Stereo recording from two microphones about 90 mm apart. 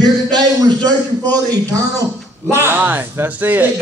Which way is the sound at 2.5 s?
25° right (ahead or behind).